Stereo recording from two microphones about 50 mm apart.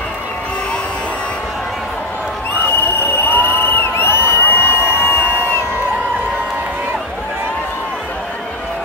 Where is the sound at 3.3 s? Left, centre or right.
Left.